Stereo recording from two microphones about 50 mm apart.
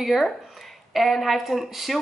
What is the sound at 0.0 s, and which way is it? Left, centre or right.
Speech, centre.